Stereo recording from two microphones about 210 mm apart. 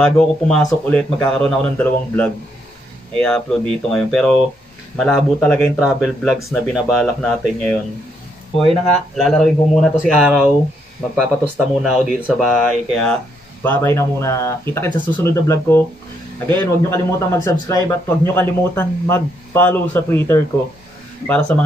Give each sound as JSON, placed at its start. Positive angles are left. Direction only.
{"t": 0.0, "sound": "a man's voice", "side_deg": 0}
{"t": 9.1, "sound": "speech", "side_deg": 0}
{"t": 13.7, "sound": "a man's voice", "side_deg": 15}